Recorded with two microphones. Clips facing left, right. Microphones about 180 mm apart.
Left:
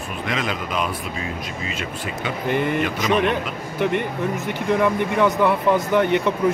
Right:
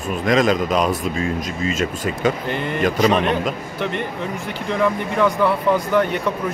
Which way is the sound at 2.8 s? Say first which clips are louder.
Right 4 dB; 40° right (ahead or behind).